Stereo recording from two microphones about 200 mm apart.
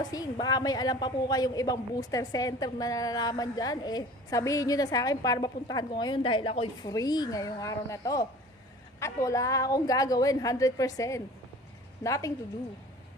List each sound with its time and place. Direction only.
0.0 s a woman's voice: 20° left (ahead or behind)